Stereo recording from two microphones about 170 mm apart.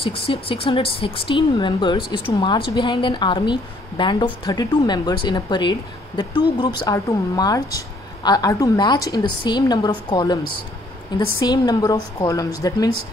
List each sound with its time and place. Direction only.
0.0 s a woman's voice: 30° left (ahead or behind)